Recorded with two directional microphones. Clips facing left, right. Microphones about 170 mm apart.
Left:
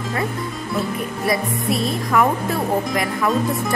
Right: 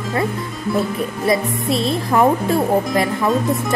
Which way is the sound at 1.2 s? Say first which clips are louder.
Right 3 dB; 25° right (ahead or behind).